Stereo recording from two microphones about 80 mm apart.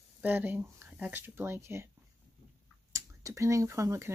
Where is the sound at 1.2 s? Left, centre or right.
Right.